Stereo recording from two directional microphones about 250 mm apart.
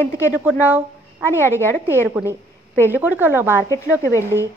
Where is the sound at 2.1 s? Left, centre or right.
Centre.